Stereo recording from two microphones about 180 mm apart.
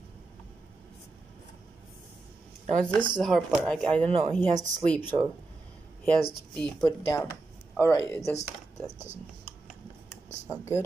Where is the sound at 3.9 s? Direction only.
30° right (ahead or behind).